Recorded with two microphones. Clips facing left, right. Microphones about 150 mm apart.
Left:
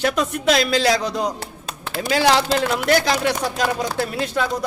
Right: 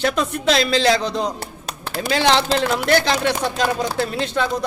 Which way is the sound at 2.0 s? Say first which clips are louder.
Even; 5° left (ahead or behind).